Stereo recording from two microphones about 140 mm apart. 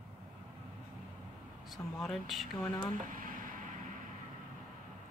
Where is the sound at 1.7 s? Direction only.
Centre (ahead or behind).